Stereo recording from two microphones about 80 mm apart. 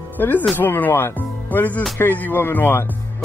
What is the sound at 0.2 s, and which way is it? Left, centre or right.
Speech, left.